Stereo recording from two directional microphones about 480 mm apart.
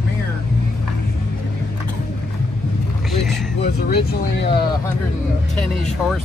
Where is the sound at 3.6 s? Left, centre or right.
Centre.